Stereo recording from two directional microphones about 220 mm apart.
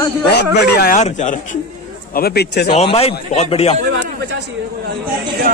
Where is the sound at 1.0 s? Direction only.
35° left (ahead or behind).